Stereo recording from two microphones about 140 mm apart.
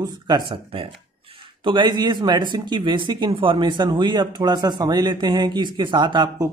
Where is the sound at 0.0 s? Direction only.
35° right (ahead or behind).